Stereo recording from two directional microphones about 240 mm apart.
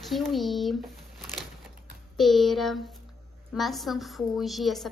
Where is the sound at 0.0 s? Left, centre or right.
Centre.